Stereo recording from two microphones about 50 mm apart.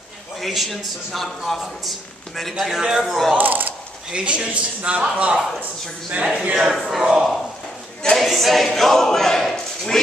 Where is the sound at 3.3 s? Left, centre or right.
Right.